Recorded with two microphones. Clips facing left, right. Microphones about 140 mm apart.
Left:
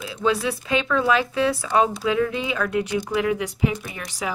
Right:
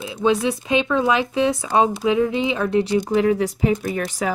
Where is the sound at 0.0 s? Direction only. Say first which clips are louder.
Right 4 dB; 20° right (ahead or behind).